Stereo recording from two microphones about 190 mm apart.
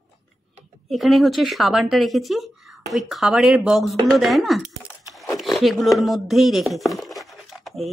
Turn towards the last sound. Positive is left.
turn(degrees=0)  # may be behind; listen again after turning